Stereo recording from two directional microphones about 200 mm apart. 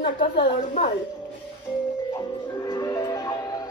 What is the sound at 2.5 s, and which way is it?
Music, 20° left (ahead or behind).